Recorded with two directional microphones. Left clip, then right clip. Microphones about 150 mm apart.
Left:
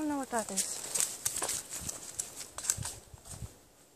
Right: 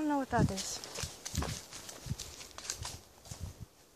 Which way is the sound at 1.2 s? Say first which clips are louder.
Left 4 dB; 55° left (ahead or behind).